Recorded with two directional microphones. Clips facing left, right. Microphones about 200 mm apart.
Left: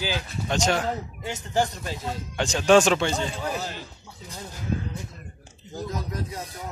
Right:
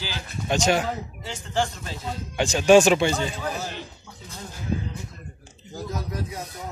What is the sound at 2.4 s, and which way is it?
Speech, 10° right (ahead or behind).